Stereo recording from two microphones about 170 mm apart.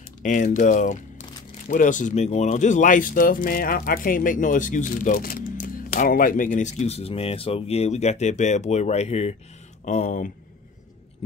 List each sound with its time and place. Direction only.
0.2 s speech: 50° left (ahead or behind)